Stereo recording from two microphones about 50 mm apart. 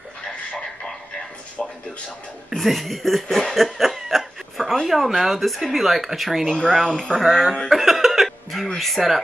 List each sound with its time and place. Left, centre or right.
0.2 s a sound: centre
2.5 s speech: centre
3.5 s chuckle: centre
4.8 s speech: centre
6.4 s speech: centre
7.0 s speech: centre
7.7 s music: centre
8.7 s speech: centre